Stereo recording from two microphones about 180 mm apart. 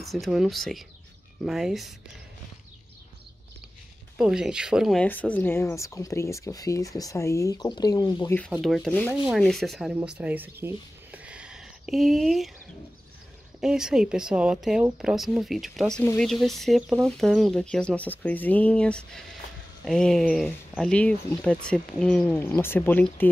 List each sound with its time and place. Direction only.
0.0 s speech: centre (ahead or behind)
4.2 s speech: 5° right (ahead or behind)
5.0 s speech: 10° left (ahead or behind); by 8.3 s 25° left (ahead or behind)
8.5 s speech: centre (ahead or behind)
13.6 s speech: 5° right (ahead or behind)